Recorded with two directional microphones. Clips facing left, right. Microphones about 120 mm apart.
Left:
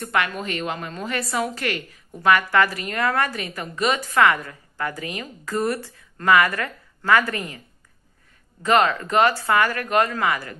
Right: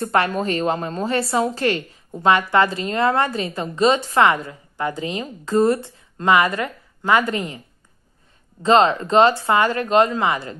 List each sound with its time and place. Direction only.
0.0 s a woman's voice: 35° right (ahead or behind)
8.6 s a woman's voice: 25° right (ahead or behind)